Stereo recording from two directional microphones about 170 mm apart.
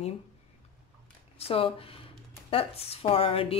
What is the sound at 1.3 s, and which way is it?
Speech, 35° left (ahead or behind).